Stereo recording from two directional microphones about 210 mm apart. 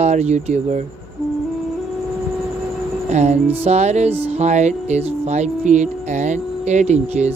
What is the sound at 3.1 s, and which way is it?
Music, 35° right (ahead or behind).